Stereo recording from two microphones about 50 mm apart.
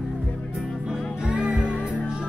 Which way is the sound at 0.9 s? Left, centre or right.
Centre.